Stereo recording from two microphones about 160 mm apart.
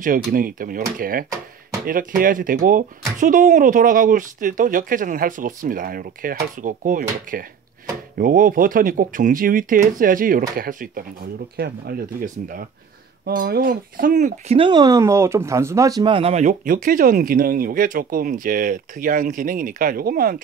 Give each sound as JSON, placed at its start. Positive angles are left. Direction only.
{"t": 0.0, "sound": "speech", "side_deg": -60}
{"t": 11.5, "sound": "speech", "side_deg": -75}
{"t": 14.6, "sound": "speech", "side_deg": -25}
{"t": 16.0, "sound": "speech", "side_deg": -35}